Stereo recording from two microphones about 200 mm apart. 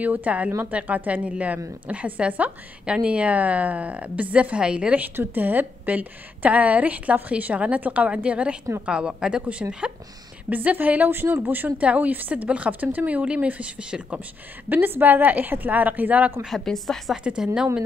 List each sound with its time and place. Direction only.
0.0 s a woman's voice: 10° right (ahead or behind)